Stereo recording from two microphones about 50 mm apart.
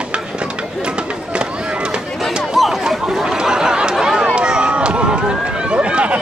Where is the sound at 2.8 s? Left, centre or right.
Centre.